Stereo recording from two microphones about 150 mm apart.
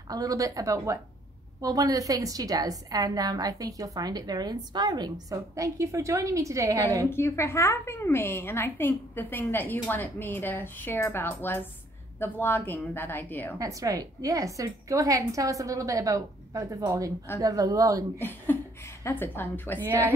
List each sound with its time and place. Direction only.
0.1 s a woman's voice: 25° right (ahead or behind)
7.1 s a woman's voice: 15° left (ahead or behind)
13.6 s a woman's voice: 20° right (ahead or behind)
18.2 s a woman's voice: 15° left (ahead or behind)